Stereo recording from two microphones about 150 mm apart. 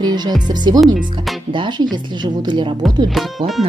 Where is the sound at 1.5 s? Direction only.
30° right (ahead or behind).